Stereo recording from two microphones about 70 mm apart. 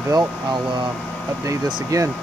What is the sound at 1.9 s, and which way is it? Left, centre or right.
Speech, right.